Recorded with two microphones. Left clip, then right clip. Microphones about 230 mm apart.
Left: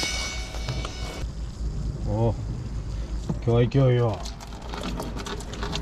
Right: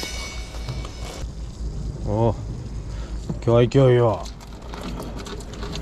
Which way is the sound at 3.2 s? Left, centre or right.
Centre.